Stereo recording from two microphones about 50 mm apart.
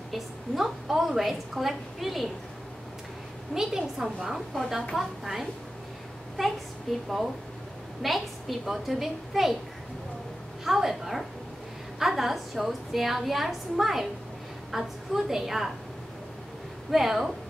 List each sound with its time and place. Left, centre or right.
0.1 s a woman's voice: centre
3.5 s a woman's voice: centre
10.6 s a woman's voice: centre
16.9 s a woman's voice: centre